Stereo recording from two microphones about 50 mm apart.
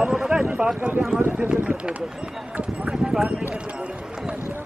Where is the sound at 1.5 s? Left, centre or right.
Right.